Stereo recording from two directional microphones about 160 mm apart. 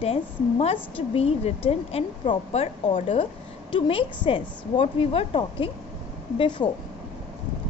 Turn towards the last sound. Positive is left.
turn(degrees=25)  # may be behind; listen again after turning